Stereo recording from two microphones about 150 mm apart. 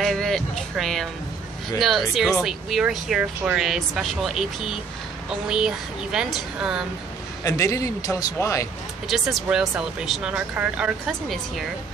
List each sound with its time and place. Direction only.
0.0 s music: 5° left (ahead or behind)
1.8 s speech: centre (ahead or behind)
7.4 s a man's voice: 20° left (ahead or behind)
9.0 s speech: centre (ahead or behind)